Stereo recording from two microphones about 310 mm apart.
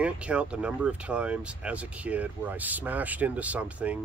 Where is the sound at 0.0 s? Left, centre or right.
Centre.